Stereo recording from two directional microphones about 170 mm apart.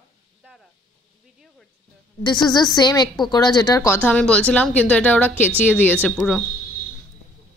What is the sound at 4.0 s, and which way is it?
Speech, 5° left (ahead or behind).